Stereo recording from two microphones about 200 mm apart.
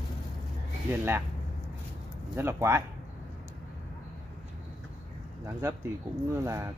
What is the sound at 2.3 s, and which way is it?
Speech, 10° right (ahead or behind).